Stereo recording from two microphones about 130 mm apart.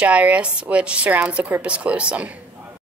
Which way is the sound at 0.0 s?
10° right (ahead or behind).